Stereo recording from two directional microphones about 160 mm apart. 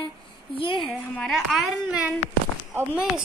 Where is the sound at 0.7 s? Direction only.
Centre (ahead or behind).